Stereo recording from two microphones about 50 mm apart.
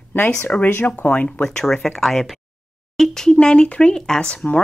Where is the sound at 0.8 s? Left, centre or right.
Left.